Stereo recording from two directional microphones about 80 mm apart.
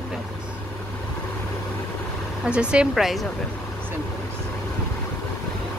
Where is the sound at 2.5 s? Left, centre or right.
Centre.